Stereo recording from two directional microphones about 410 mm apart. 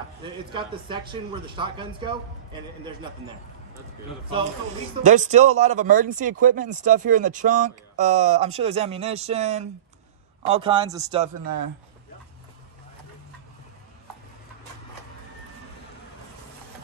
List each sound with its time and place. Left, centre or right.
0.2 s a man's voice: centre
5.0 s a man's voice: centre